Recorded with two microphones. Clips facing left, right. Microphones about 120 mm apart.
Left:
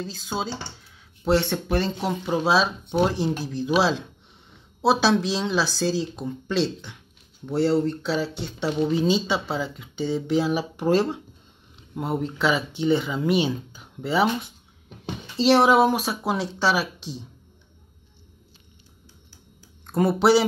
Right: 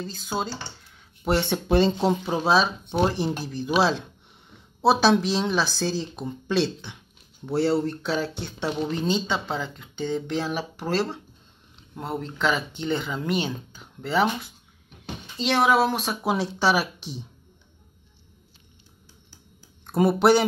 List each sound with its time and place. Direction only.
0.0 s a woman's voice: centre (ahead or behind)
1.5 s speech: 25° right (ahead or behind)
2.2 s a woman's voice: centre (ahead or behind)
15.3 s speech: 30° left (ahead or behind)
15.8 s a woman's voice: 10° left (ahead or behind)
19.9 s a woman's voice: 5° right (ahead or behind)